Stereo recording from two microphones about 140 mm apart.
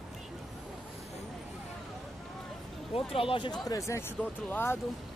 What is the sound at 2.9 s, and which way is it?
Speech, 40° left (ahead or behind).